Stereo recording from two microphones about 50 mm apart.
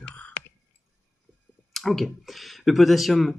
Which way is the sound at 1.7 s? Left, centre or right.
Centre.